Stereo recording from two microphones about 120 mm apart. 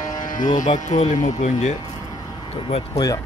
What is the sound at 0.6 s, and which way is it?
Speech, 90° left.